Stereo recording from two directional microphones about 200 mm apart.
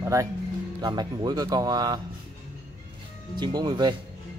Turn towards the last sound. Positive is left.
turn(degrees=-20)  # may be behind; listen again after turning